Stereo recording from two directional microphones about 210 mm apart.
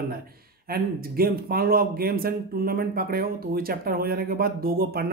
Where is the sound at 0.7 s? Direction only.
45° right (ahead or behind).